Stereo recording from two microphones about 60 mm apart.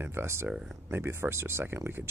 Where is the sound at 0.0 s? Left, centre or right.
Right.